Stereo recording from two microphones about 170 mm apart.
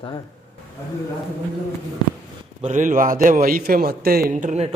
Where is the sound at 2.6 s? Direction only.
50° right (ahead or behind).